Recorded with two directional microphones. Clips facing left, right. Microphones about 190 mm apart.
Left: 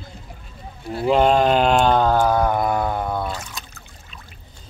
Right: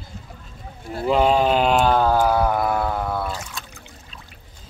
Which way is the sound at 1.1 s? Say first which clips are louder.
Left 2 dB; 5° right (ahead or behind).